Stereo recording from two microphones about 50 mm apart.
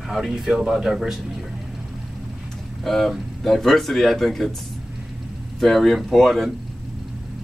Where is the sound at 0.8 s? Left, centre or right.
Centre.